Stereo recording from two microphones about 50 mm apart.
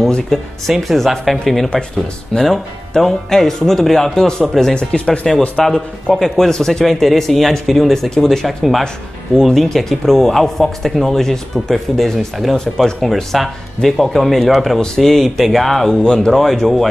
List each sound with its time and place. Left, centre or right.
0.3 s a man's voice: centre
4.7 s speech: left
5.6 s a man's voice: centre
8.5 s speech: centre
15.9 s a man's voice: centre
16.3 s speech: centre